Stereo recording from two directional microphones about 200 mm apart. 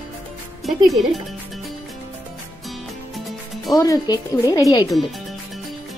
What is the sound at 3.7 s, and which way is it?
Speech, 20° left (ahead or behind).